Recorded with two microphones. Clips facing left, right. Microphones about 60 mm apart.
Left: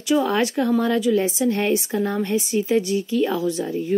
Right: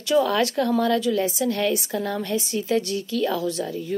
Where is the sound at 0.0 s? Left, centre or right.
Centre.